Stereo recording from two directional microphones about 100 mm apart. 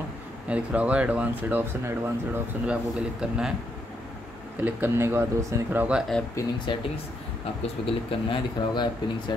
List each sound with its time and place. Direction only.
0.5 s speech: 10° right (ahead or behind)
2.6 s speech: 10° right (ahead or behind)
4.6 s speech: 20° right (ahead or behind)
5.8 s speech: 10° right (ahead or behind)
6.7 s speech: 55° left (ahead or behind)